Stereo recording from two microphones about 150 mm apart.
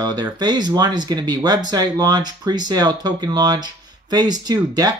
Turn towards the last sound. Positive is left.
turn(degrees=-25)  # may be behind; listen again after turning